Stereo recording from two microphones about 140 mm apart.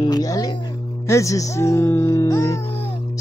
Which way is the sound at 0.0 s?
25° left (ahead or behind).